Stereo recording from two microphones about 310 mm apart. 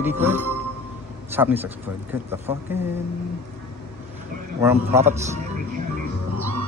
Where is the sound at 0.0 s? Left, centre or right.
Centre.